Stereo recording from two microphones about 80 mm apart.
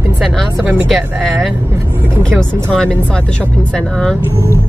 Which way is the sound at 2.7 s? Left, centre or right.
Centre.